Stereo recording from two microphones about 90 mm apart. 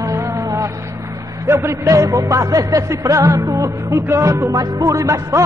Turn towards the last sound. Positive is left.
turn(degrees=-35)  # may be behind; listen again after turning